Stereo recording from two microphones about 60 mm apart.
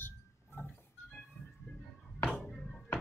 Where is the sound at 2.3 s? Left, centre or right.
Centre.